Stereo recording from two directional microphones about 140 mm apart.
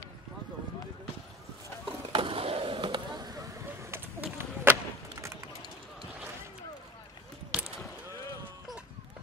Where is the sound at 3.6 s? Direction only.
15° right (ahead or behind).